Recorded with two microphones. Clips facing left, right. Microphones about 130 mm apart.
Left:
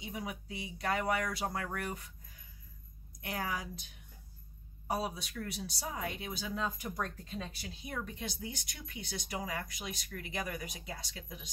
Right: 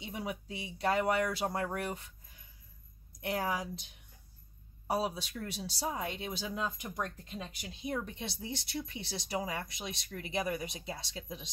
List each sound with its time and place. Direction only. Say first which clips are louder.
0.0 s speech: right 2 dB; 30° right (ahead or behind)
3.2 s speech: right 4 dB; 30° right (ahead or behind)
4.8 s speech: right 3 dB; 30° right (ahead or behind)